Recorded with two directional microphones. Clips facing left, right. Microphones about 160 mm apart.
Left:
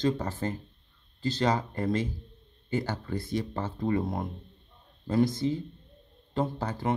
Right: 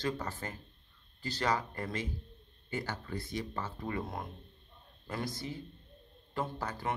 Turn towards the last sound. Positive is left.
turn(degrees=20)  # may be behind; listen again after turning